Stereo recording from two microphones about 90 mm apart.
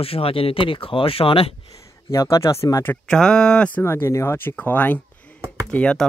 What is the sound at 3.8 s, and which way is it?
Speech, 30° left (ahead or behind).